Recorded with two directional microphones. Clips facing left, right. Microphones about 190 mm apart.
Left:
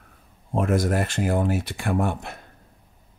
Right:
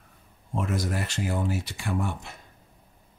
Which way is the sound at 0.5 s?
55° left (ahead or behind).